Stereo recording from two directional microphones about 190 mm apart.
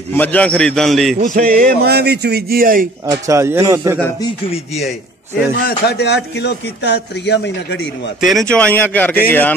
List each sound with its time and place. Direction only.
0.1 s a man's voice: 10° left (ahead or behind)
1.1 s speech: 40° right (ahead or behind)
3.1 s speech: 15° right (ahead or behind)
5.6 s a man's voice: 55° left (ahead or behind)
8.2 s speech: centre (ahead or behind)